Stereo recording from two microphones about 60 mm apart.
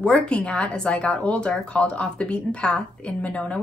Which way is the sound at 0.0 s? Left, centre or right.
Centre.